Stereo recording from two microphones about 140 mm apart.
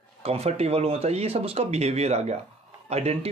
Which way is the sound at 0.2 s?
45° right (ahead or behind).